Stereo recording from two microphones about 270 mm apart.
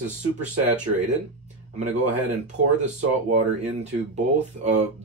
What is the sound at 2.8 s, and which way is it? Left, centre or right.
Speech, right.